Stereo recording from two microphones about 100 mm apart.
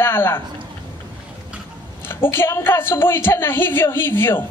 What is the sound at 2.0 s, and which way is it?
Speech, 25° left (ahead or behind).